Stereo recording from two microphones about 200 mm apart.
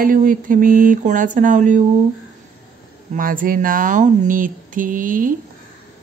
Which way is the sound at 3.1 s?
45° right (ahead or behind).